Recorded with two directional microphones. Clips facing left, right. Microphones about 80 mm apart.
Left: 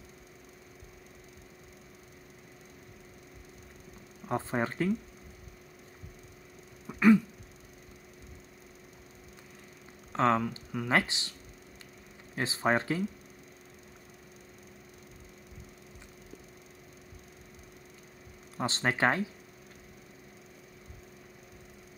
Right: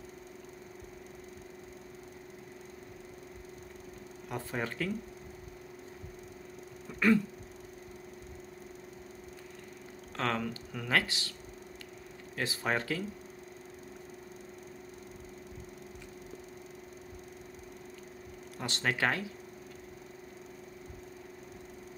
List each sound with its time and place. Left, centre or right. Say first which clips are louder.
4.3 s speech: left 5 dB; left
6.9 s throat clearing: left 1 dB; centre
10.1 s speech: left 7 dB; left
12.4 s speech: left 4 dB; left
18.6 s speech: left 3 dB; left